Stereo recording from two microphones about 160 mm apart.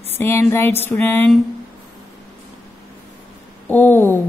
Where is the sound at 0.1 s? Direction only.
15° left (ahead or behind).